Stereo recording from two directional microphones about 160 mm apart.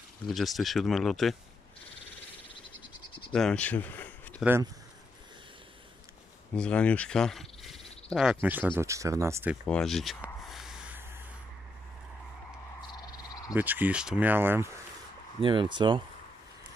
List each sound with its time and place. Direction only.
0.3 s speech: centre (ahead or behind)
3.3 s speech: 5° left (ahead or behind)
6.5 s speech: 5° left (ahead or behind); by 9.6 s 15° right (ahead or behind)
9.7 s speech: 5° left (ahead or behind)
10.2 s snort: centre (ahead or behind)
12.8 s frog: 25° left (ahead or behind)
13.6 s speech: 10° right (ahead or behind)
15.4 s speech: 30° right (ahead or behind)